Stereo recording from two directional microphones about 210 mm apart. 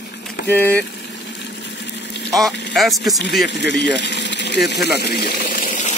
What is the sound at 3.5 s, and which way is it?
Speech, 55° left (ahead or behind).